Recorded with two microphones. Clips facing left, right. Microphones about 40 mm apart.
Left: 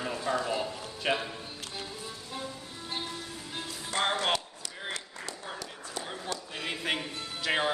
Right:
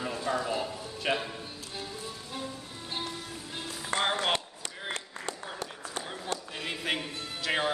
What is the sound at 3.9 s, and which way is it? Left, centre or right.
Speech, right.